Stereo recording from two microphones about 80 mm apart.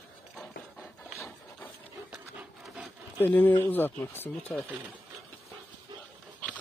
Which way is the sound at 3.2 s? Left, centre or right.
Left.